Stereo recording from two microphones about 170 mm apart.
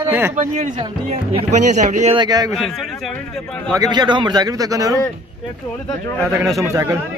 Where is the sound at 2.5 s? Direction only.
Centre (ahead or behind).